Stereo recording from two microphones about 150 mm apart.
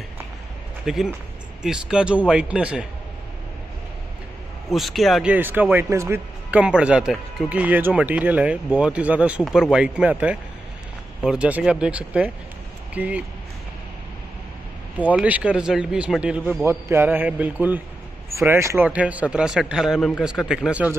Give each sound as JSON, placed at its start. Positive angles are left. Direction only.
{"t": 0.8, "sound": "a man's voice", "side_deg": -5}
{"t": 4.7, "sound": "a man's voice", "side_deg": 0}
{"t": 5.3, "sound": "a man's voice", "side_deg": -10}
{"t": 15.1, "sound": "a man's voice", "side_deg": -10}